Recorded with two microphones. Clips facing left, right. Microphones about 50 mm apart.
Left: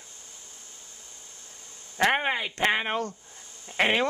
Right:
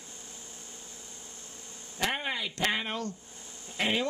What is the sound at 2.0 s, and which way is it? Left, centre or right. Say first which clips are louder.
Speech: left 8 dB; left.